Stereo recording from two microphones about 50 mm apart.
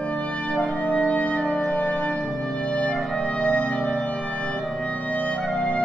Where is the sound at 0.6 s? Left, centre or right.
Left.